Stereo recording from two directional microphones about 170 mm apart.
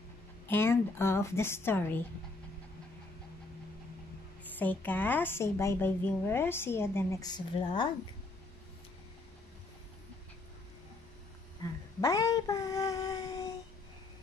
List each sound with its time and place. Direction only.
0.5 s a woman's voice: 15° left (ahead or behind)
4.6 s a woman's voice: 10° left (ahead or behind); by 7.9 s 30° left (ahead or behind)
11.6 s a sound: 20° left (ahead or behind)